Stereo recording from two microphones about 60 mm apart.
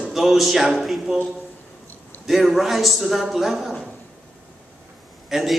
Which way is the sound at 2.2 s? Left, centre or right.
Centre.